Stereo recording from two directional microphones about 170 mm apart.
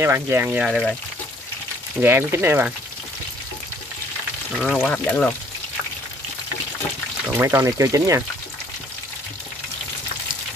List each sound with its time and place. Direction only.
0.0 s speech: 15° right (ahead or behind)
0.7 s frying: centre (ahead or behind)
2.0 s speech: 10° right (ahead or behind)
4.6 s frying: centre (ahead or behind)
4.9 s speech: 10° left (ahead or behind)
7.3 s speech: 15° right (ahead or behind)